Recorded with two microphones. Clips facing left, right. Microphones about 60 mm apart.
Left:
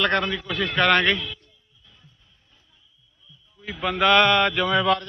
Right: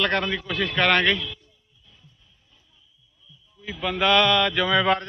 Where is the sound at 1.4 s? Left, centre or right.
Left.